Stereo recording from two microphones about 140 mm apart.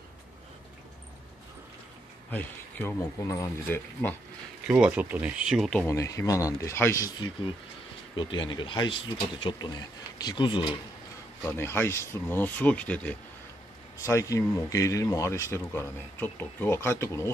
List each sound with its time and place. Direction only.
2.3 s speech: 15° left (ahead or behind)
4.6 s speech: 10° right (ahead or behind)
5.8 s speech: 20° left (ahead or behind)
8.2 s speech: 35° left (ahead or behind)
11.4 s speech: 15° left (ahead or behind)
14.0 s speech: 20° left (ahead or behind)